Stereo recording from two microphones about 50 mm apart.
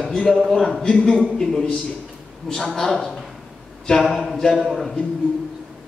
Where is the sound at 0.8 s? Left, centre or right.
Centre.